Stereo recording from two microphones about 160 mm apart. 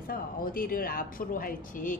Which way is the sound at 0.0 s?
65° left (ahead or behind).